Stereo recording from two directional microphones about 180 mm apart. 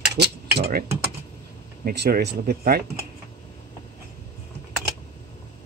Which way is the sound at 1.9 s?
55° right (ahead or behind).